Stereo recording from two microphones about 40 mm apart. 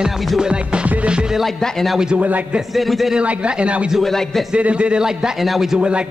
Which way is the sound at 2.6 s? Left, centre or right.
Centre.